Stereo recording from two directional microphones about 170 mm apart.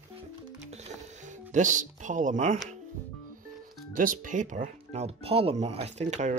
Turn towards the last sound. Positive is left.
turn(degrees=-40)  # may be behind; listen again after turning